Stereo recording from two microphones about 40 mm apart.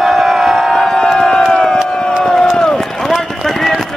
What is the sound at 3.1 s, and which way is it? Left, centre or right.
Run, centre.